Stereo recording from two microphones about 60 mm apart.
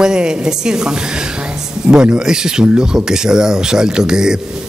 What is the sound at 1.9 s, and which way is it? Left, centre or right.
Speech, right.